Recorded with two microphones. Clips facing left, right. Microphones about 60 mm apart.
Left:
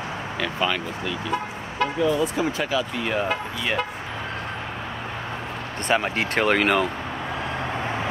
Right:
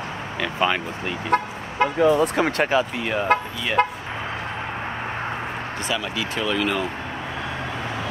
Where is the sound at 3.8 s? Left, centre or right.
Right.